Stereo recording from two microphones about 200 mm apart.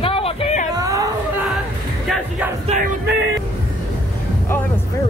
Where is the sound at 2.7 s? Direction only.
35° right (ahead or behind).